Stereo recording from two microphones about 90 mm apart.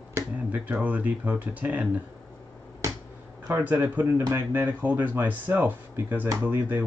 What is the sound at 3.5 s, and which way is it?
Speech, 20° right (ahead or behind).